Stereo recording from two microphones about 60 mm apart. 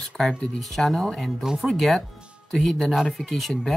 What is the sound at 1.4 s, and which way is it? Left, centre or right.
Speech, centre.